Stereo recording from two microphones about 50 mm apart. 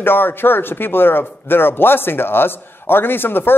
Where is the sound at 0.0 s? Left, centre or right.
Left.